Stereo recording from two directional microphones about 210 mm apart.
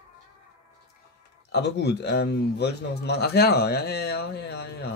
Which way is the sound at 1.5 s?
50° left (ahead or behind).